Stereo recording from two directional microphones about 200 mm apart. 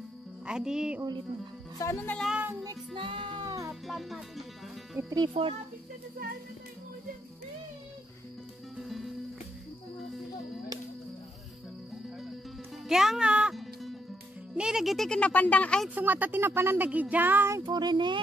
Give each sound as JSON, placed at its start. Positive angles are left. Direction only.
{"t": 0.5, "sound": "speech", "side_deg": -5}
{"t": 1.8, "sound": "music", "side_deg": 15}
{"t": 2.1, "sound": "speech", "side_deg": -5}
{"t": 2.6, "sound": "speech", "side_deg": -20}
{"t": 3.8, "sound": "speech", "side_deg": 0}
{"t": 4.9, "sound": "a child's voice", "side_deg": -20}
{"t": 5.3, "sound": "speech", "side_deg": -30}
{"t": 8.8, "sound": "music", "side_deg": 0}
{"t": 12.8, "sound": "music", "side_deg": 0}
{"t": 14.5, "sound": "speech", "side_deg": -5}
{"t": 15.9, "sound": "speech", "side_deg": -10}
{"t": 17.6, "sound": "a child's voice", "side_deg": -20}